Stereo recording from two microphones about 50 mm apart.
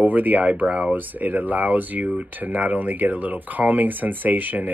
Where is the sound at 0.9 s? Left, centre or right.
Right.